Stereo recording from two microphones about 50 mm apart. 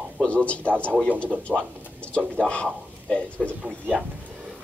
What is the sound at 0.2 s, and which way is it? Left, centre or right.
Speech, left.